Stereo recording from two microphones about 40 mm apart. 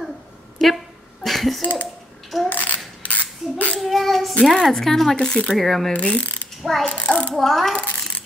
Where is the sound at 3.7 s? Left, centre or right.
Centre.